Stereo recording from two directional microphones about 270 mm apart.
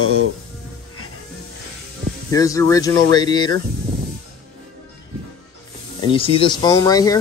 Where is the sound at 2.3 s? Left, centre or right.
Centre.